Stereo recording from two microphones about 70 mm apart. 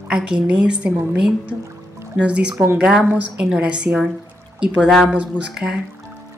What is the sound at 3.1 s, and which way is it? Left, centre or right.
A woman's voice, right.